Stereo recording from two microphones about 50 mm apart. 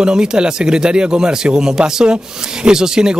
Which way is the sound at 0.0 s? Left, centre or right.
Centre.